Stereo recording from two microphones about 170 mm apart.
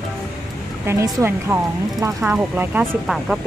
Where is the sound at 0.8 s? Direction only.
15° right (ahead or behind).